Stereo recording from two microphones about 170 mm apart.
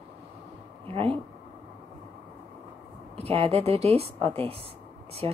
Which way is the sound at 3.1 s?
35° right (ahead or behind).